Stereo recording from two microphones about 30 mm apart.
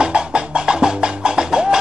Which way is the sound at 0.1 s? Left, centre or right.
Right.